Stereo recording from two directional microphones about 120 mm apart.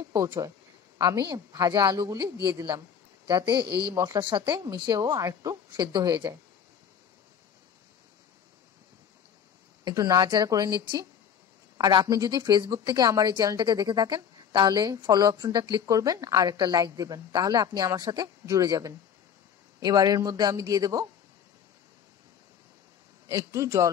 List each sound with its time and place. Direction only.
0.9 s speech: 35° right (ahead or behind)
3.3 s speech: 40° right (ahead or behind)
3.9 s a man's voice: 30° right (ahead or behind)
4.2 s speech: 40° right (ahead or behind)
9.8 s speech: 30° right (ahead or behind)
23.2 s a man's voice: 25° right (ahead or behind)